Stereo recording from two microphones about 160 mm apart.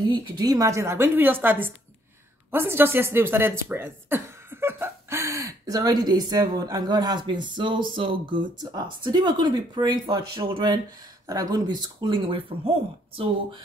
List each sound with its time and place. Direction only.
0.0 s a woman's voice: 25° right (ahead or behind)